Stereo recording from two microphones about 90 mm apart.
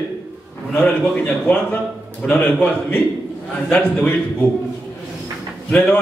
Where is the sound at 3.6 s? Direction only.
20° left (ahead or behind).